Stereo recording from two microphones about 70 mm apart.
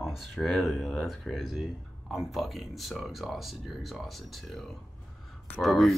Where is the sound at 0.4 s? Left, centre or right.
Centre.